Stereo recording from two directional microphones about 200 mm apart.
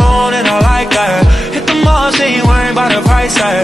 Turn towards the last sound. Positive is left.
turn(degrees=0)  # may be behind; listen again after turning